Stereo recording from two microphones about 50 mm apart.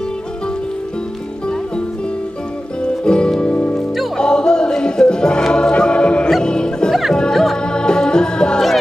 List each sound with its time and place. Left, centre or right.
2.8 s music: centre
3.5 s music: left
4.2 s music: centre